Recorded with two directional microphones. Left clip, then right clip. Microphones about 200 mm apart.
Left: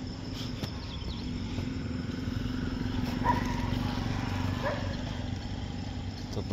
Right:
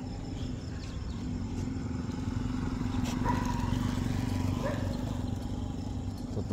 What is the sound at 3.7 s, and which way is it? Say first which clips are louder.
Vehicle: left 1 dB; 60° right (ahead or behind).